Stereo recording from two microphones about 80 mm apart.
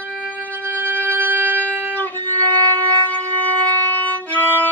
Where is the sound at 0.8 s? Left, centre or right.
Right.